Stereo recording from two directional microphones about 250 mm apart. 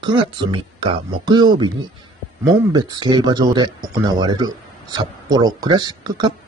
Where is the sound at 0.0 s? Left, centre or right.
Centre.